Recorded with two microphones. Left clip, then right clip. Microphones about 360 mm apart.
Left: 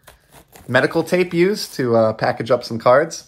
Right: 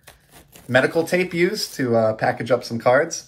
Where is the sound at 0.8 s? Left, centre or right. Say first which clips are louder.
Left 2 dB; centre.